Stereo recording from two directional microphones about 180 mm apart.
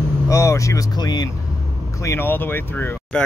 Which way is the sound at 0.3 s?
15° left (ahead or behind).